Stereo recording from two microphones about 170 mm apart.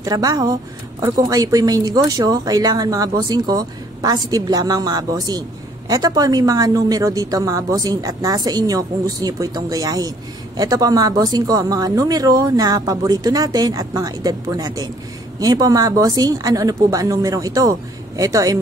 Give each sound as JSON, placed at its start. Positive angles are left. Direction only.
{"t": 0.0, "sound": "speech", "side_deg": -20}